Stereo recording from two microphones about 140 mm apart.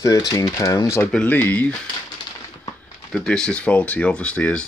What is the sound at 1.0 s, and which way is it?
Speech, 10° left (ahead or behind).